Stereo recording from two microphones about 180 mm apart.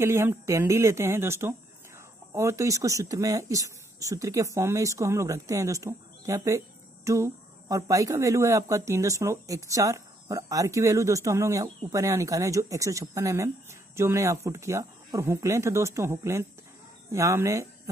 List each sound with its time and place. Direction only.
0.0 s speech: 15° right (ahead or behind)